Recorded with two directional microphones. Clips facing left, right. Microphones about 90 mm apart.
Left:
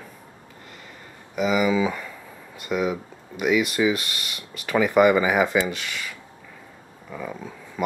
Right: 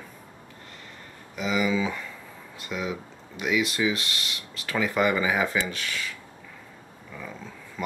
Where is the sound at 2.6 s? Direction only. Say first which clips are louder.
Left 7 dB; 50° left (ahead or behind).